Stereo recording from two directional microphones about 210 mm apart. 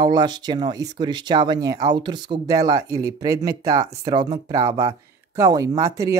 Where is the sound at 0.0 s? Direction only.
20° right (ahead or behind).